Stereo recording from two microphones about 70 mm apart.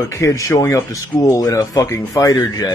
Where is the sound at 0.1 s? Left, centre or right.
Left.